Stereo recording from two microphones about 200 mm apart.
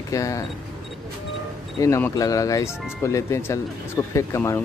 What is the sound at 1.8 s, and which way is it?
Speech, 15° left (ahead or behind).